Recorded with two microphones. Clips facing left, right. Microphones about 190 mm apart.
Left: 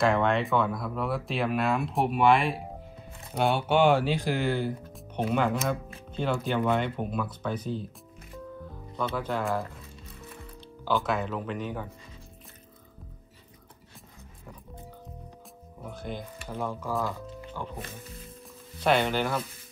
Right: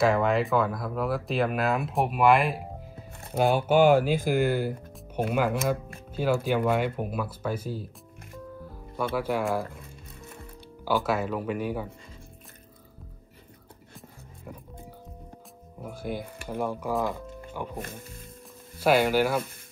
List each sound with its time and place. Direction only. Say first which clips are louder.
0.0 s speech: right 1 dB; 5° right (ahead or behind)
10.9 s speech: right 2 dB; 5° right (ahead or behind)
15.8 s music: right 3 dB; 10° right (ahead or behind)
16.4 s speech: right 3 dB; 15° right (ahead or behind)
17.5 s music: right 3 dB; 15° right (ahead or behind)
17.7 s speech: right 3 dB; 55° right (ahead or behind)
18.8 s speech: right 3 dB; 5° right (ahead or behind)